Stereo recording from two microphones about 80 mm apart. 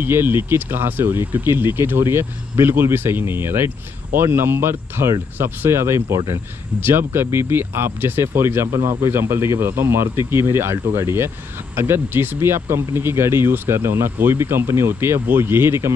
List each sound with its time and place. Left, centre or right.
0.0 s speech: right
6.8 s speech: right